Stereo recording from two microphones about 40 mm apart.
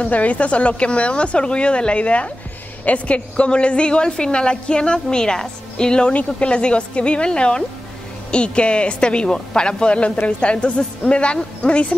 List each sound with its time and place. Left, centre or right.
0.0 s a woman's voice: left